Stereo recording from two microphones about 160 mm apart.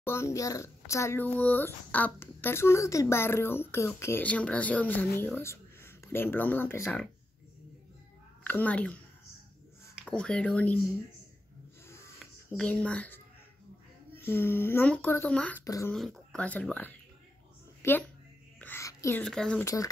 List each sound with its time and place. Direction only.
0.0 s a child's voice: 15° left (ahead or behind)
8.5 s a child's voice: 10° left (ahead or behind)
10.0 s a child's voice: 5° left (ahead or behind)
11.9 s a sound: 15° left (ahead or behind)
12.5 s a child's voice: 5° left (ahead or behind)
15.6 s speech: 20° left (ahead or behind)
15.9 s a child's voice: centre (ahead or behind)
18.6 s whispering: 15° left (ahead or behind)
19.2 s speech: 5° left (ahead or behind)
19.6 s speech: 20° left (ahead or behind)